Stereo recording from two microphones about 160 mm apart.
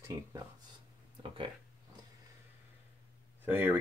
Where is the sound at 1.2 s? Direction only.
35° right (ahead or behind).